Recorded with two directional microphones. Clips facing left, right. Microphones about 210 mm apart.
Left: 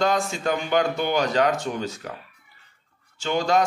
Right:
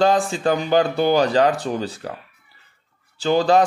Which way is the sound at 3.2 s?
35° right (ahead or behind).